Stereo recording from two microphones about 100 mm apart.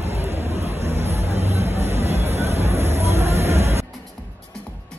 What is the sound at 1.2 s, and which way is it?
Music, 90° right.